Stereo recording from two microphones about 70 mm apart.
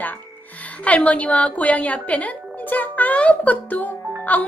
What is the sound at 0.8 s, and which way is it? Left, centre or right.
A woman's voice, left.